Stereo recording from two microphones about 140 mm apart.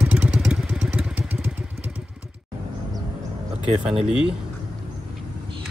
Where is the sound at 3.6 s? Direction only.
45° right (ahead or behind).